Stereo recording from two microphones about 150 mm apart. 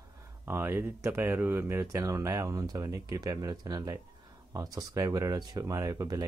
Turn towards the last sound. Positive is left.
turn(degrees=-25)  # may be behind; listen again after turning